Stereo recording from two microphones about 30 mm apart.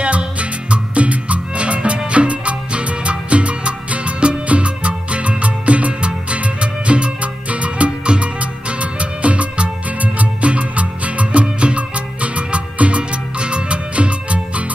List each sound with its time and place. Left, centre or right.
0.0 s music: right